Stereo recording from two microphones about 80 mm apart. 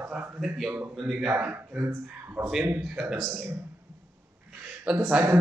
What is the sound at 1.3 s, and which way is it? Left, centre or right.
A man's voice, right.